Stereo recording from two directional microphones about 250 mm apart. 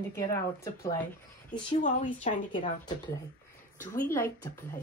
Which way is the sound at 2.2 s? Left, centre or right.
Centre.